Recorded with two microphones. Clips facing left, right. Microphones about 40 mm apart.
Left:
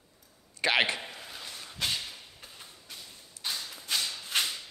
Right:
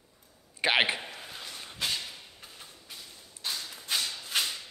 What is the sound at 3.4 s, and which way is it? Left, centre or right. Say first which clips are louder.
Whip: even; centre.